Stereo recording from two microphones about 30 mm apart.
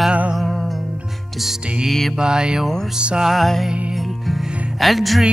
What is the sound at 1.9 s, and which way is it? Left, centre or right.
Music, centre.